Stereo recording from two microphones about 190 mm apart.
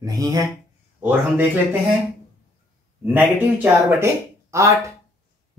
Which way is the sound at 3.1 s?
10° right (ahead or behind).